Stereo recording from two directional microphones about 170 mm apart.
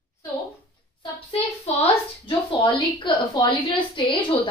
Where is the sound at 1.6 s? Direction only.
35° left (ahead or behind).